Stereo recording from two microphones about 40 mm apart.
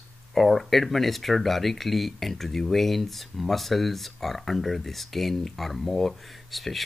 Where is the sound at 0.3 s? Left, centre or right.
Centre.